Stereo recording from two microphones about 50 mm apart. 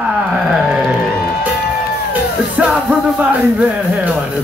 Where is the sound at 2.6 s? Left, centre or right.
Right.